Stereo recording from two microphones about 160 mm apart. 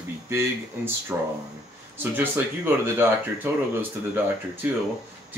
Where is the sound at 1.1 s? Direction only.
15° right (ahead or behind).